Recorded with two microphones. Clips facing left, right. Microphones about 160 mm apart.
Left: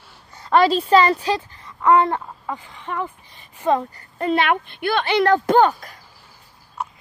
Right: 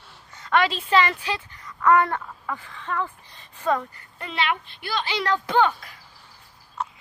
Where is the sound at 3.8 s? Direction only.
45° left (ahead or behind).